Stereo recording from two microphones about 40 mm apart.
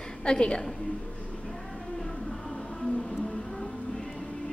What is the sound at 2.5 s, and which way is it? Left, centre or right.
Music, centre.